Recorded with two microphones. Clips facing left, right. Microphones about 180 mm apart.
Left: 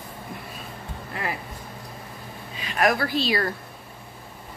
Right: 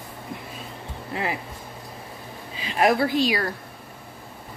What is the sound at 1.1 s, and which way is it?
Speech, 25° right (ahead or behind).